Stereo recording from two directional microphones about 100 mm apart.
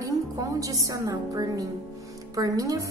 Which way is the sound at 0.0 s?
35° right (ahead or behind).